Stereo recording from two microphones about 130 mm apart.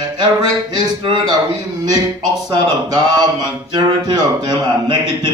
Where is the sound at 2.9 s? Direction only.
30° right (ahead or behind).